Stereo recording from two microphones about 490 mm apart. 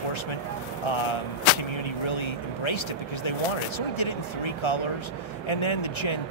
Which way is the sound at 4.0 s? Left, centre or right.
Left.